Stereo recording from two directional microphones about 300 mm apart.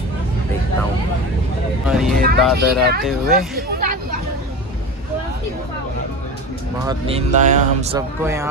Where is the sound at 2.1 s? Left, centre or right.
Right.